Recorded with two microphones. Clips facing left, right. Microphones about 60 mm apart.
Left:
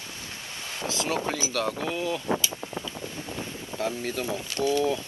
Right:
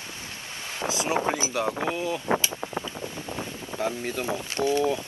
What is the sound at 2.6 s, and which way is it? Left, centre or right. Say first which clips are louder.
Boat: right 3 dB; right.